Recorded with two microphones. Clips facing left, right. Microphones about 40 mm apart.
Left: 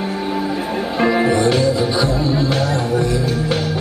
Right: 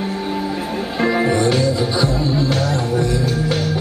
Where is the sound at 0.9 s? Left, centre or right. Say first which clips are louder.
Left 1 dB; centre.